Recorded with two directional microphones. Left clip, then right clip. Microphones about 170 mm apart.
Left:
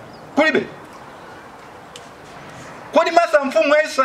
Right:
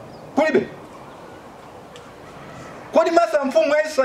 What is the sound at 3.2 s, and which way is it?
Speech, 20° left (ahead or behind).